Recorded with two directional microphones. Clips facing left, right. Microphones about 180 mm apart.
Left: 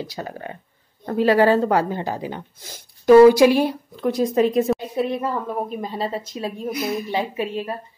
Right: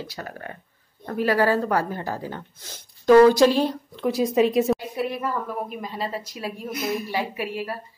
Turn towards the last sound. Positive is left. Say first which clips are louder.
# left 3 dB
turn(degrees=20)  # may be behind; listen again after turning